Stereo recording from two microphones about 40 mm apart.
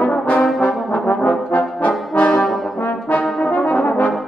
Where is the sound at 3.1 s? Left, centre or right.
Left.